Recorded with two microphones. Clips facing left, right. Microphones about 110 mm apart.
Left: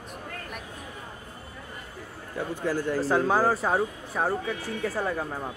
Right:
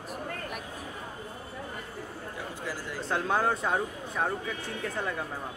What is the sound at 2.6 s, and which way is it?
Speech, 55° left (ahead or behind).